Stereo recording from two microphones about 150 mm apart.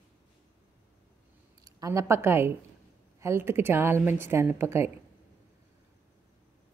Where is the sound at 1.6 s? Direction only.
25° right (ahead or behind).